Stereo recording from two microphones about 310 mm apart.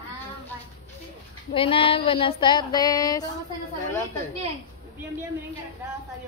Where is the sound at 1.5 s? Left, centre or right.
Centre.